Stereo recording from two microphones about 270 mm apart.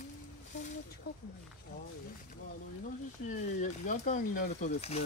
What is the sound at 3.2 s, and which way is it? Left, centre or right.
Speech, left.